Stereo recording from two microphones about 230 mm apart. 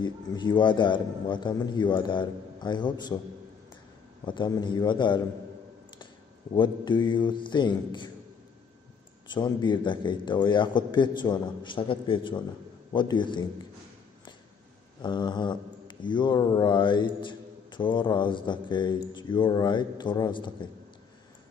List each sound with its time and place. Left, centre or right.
0.0 s speech: centre
4.3 s speech: centre
6.5 s speech: centre
9.3 s speech: centre
15.0 s speech: centre